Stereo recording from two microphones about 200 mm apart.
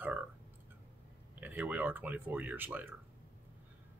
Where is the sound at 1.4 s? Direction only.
10° right (ahead or behind).